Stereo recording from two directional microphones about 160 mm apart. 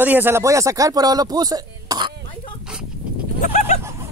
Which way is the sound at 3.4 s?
50° left (ahead or behind).